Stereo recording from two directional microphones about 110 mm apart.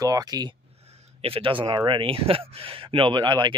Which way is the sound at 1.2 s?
55° right (ahead or behind).